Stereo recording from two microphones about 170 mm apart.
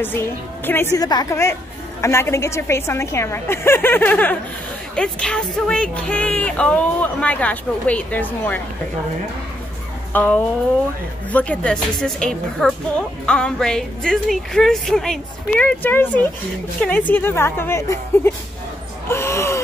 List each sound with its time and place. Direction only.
0.0 s speech: 10° left (ahead or behind)
10.1 s speech: 10° left (ahead or behind)
17.1 s speech: 15° left (ahead or behind)